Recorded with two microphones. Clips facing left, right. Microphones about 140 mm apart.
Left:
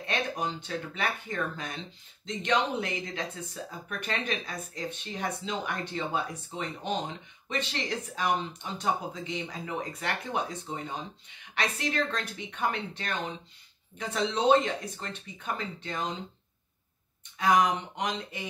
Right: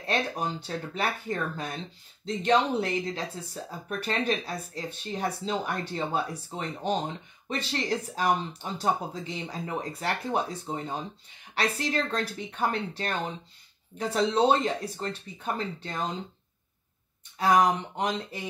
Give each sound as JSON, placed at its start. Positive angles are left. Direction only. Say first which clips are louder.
{"t": 0.0, "sound": "speech", "louder": "right 2 dB", "side_deg": -35}
{"t": 17.4, "sound": "speech", "louder": "right 2 dB", "side_deg": -35}